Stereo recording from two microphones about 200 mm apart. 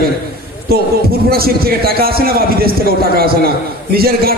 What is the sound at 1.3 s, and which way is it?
A man's voice, 50° right (ahead or behind).